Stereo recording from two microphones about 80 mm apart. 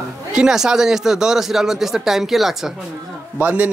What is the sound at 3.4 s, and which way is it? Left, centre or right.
Speech, centre.